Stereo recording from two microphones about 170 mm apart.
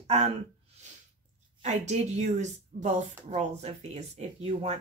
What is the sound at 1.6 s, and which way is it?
Speech, 40° right (ahead or behind).